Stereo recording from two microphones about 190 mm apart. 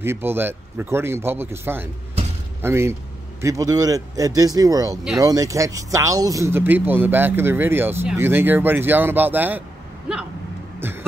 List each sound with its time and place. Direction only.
0.0 s a man's voice: 10° right (ahead or behind)
10.8 s music: 10° right (ahead or behind)